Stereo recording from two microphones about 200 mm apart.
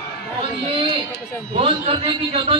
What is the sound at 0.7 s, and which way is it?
A man's voice, 25° right (ahead or behind).